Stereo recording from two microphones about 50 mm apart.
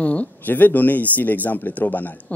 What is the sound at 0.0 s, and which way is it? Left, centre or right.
A man's voice, left.